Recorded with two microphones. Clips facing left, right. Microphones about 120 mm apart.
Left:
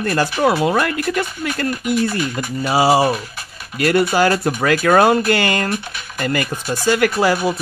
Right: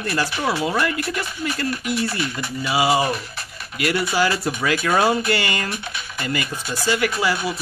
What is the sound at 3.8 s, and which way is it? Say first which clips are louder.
Speech: left 6 dB; 45° left (ahead or behind).